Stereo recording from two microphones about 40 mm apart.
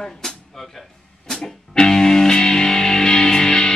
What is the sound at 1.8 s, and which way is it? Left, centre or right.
Music, centre.